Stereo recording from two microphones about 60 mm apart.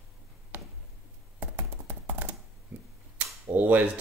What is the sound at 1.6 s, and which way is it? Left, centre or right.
Tap, right.